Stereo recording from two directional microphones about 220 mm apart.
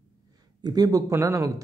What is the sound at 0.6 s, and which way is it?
Speech, 15° right (ahead or behind).